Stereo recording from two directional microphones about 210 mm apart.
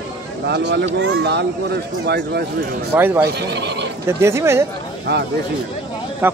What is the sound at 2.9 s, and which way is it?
Speech, 10° right (ahead or behind).